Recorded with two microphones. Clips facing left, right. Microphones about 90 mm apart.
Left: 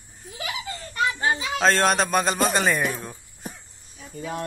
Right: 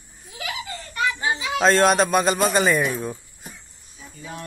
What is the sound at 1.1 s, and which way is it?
Speech, 45° left (ahead or behind).